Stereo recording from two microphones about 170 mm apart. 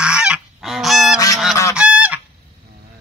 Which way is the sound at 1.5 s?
20° left (ahead or behind).